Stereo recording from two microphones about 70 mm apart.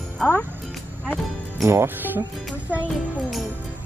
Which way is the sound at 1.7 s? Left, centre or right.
Right.